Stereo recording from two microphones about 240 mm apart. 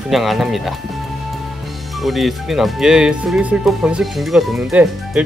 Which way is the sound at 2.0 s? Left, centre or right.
Centre.